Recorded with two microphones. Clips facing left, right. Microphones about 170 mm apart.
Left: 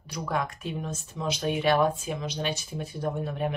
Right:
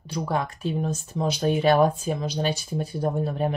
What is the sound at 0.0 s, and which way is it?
Speech, 30° right (ahead or behind).